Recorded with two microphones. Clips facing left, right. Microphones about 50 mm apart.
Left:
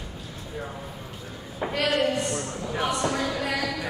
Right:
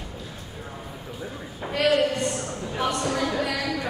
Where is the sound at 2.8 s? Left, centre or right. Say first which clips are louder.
Even; centre.